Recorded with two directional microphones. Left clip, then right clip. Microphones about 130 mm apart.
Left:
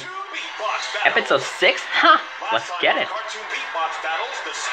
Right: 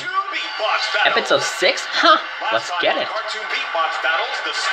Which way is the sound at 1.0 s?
15° right (ahead or behind).